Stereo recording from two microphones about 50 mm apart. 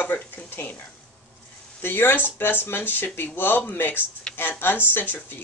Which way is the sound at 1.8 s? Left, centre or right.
Left.